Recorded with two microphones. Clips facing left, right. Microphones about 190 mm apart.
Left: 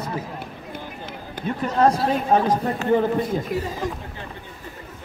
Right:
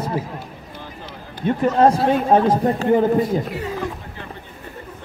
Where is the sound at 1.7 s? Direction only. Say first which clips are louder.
Right 2 dB; 25° right (ahead or behind).